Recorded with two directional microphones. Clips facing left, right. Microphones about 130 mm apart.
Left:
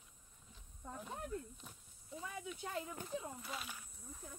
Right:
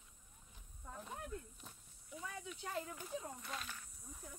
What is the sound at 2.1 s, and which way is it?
Speech, 30° left (ahead or behind).